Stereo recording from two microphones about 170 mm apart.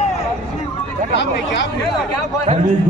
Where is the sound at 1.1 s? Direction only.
90° left.